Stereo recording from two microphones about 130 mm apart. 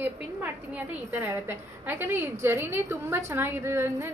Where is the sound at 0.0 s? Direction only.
15° right (ahead or behind).